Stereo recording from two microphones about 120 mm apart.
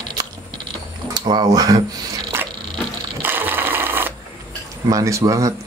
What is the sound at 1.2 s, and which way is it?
Speech, 35° right (ahead or behind).